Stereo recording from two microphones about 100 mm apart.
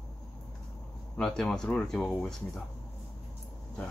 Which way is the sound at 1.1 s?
5° left (ahead or behind).